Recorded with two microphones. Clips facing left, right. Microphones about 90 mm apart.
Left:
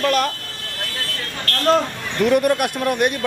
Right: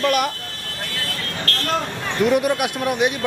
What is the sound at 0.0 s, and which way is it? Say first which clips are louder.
Speech: left 1 dB; 10° right (ahead or behind).